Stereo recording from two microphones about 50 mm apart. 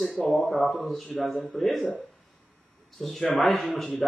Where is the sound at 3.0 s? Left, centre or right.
Centre.